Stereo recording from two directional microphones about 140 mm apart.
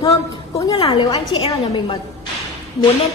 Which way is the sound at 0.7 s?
40° left (ahead or behind).